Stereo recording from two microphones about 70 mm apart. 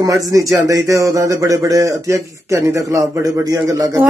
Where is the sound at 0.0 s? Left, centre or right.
Right.